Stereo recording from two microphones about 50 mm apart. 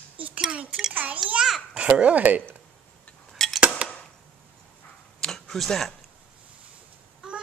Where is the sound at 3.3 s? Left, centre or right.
Centre.